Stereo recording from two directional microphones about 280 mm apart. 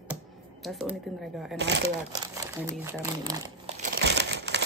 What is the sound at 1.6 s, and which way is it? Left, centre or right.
Speech, right.